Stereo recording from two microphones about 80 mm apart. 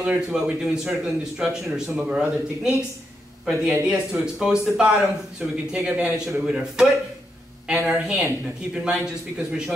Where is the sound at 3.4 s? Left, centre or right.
Centre.